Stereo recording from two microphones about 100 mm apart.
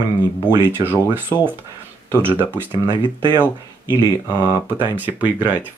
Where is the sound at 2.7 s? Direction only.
60° right (ahead or behind).